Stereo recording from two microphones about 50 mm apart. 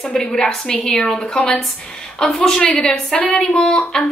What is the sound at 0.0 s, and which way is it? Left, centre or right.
A woman's voice, centre.